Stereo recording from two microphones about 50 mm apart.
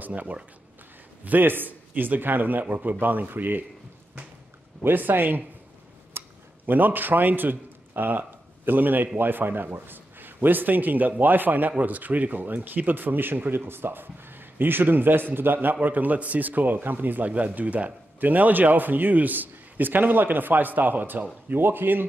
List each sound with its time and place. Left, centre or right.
0.0 s speech: right
4.8 s speech: right
6.2 s a sound: right
6.6 s a man's voice: right